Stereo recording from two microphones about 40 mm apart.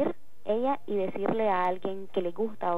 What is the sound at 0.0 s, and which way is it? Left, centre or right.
A woman's voice, right.